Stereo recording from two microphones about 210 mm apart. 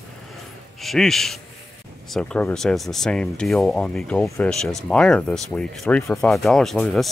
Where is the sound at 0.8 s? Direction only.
Centre (ahead or behind).